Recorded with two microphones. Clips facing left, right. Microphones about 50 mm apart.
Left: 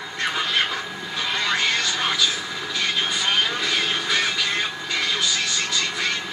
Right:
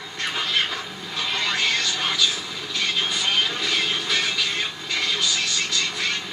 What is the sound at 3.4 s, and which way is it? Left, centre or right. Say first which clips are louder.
Vehicle: left 1 dB; centre.